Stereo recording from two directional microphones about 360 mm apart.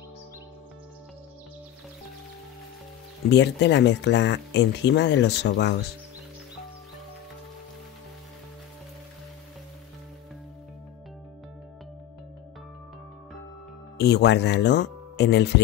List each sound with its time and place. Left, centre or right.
3.3 s speech: left
13.9 s speech: left